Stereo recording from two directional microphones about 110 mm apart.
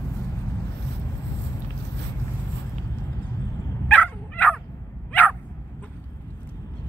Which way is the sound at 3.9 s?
15° left (ahead or behind).